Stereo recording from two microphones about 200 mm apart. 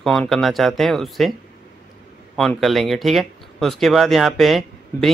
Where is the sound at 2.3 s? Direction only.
Centre (ahead or behind).